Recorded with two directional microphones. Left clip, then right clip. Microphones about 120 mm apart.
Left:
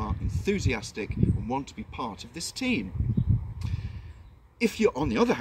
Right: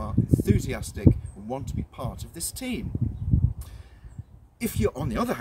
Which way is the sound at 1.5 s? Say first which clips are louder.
Left 2 dB; 50° right (ahead or behind).